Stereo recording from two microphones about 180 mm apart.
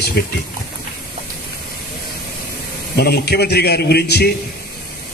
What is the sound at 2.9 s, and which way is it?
A man's voice, 60° left (ahead or behind).